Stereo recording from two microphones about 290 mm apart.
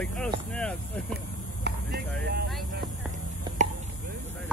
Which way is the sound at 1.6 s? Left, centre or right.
Right.